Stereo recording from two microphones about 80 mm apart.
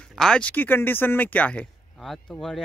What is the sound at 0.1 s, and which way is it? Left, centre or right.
Speech, centre.